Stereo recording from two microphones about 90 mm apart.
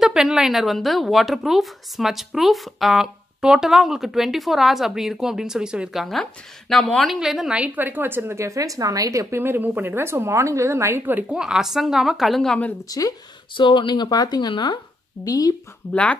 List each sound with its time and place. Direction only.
0.0 s a woman's voice: 5° right (ahead or behind); by 9.4 s 35° right (ahead or behind)
9.4 s a woman's voice: 25° right (ahead or behind)
11.3 s a woman's voice: 5° right (ahead or behind)
12.8 s speech: 40° left (ahead or behind)
13.6 s speech: 60° left (ahead or behind)
15.2 s speech: 45° left (ahead or behind)
15.9 s speech: 15° left (ahead or behind)